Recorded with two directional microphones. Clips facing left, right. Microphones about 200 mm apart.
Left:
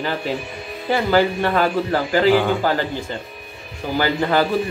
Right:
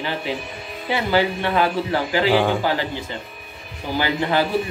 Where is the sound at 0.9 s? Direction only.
45° left (ahead or behind).